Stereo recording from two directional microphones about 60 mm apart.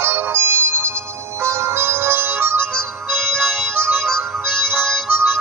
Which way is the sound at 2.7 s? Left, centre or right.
Centre.